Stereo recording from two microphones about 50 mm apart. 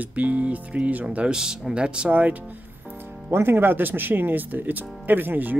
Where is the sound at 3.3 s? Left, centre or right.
Right.